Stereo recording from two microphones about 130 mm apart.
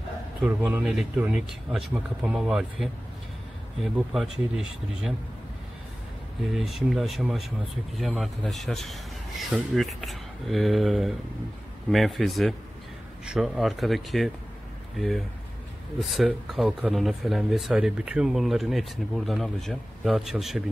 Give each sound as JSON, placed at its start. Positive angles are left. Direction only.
{"t": 0.4, "sound": "speech", "side_deg": -10}
{"t": 6.4, "sound": "speech", "side_deg": 0}